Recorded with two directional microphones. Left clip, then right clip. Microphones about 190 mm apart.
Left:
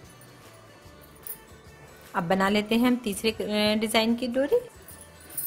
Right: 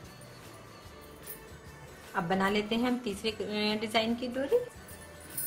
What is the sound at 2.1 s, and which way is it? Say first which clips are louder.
A woman's voice: left 5 dB; 60° left (ahead or behind).